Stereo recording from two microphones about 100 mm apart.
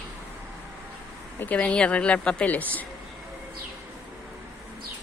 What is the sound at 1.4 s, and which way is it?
Speech, 15° left (ahead or behind).